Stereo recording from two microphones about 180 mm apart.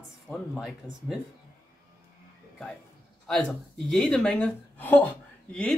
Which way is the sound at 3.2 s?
Centre (ahead or behind).